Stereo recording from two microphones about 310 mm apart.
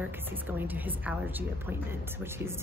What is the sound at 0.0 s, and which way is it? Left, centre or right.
Speech, centre.